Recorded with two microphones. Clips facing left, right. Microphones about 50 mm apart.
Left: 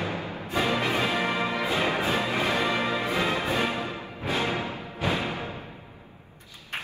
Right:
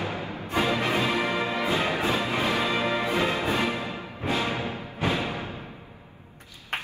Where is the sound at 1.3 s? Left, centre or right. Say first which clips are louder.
Right 1 dB; right.